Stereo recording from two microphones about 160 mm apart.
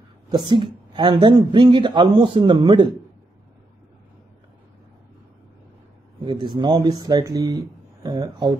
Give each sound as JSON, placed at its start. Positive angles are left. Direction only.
{"t": 0.3, "sound": "a woman's voice", "side_deg": -30}
{"t": 6.2, "sound": "a woman's voice", "side_deg": -30}